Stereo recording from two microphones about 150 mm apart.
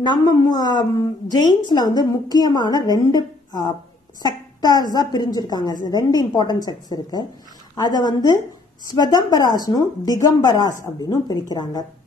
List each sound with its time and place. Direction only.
0.0 s a woman's voice: 25° left (ahead or behind)